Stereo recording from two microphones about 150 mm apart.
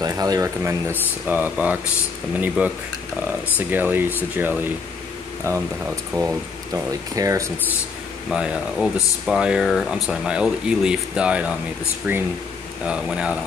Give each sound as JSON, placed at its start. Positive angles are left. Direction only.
{"t": 0.0, "sound": "speech", "side_deg": -25}
{"t": 8.3, "sound": "speech", "side_deg": -5}